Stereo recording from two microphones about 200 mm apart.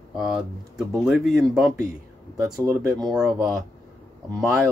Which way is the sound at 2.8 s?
20° right (ahead or behind).